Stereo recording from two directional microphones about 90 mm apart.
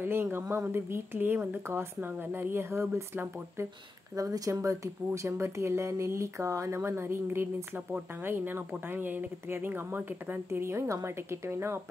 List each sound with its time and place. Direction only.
0.0 s a woman's voice: 25° right (ahead or behind)
4.1 s a woman's voice: 40° right (ahead or behind)